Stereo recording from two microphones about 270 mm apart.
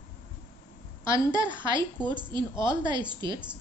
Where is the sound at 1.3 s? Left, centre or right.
Centre.